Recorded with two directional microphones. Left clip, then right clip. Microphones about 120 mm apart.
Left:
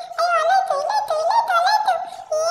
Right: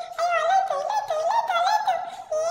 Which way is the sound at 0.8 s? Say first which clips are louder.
Left 4 dB; 5° right (ahead or behind).